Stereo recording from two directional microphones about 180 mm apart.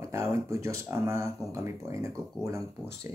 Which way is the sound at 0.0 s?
15° right (ahead or behind).